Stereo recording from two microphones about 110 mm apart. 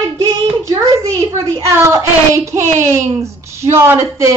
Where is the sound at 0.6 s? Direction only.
30° right (ahead or behind).